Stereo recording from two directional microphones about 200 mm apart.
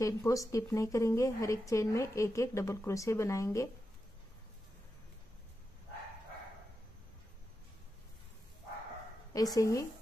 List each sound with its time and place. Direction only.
0.0 s a woman's voice: 15° left (ahead or behind)
9.3 s a woman's voice: 15° left (ahead or behind)